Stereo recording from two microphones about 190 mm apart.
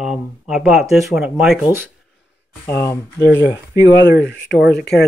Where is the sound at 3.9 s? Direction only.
65° left (ahead or behind).